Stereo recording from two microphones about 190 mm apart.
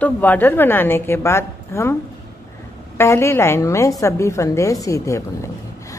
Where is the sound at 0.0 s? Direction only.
10° left (ahead or behind).